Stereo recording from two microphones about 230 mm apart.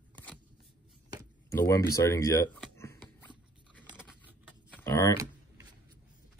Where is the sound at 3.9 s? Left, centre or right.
Centre.